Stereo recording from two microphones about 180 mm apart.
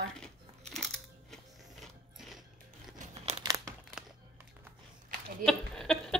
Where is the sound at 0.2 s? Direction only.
5° left (ahead or behind).